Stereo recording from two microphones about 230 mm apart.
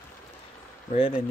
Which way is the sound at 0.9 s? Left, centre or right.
Left.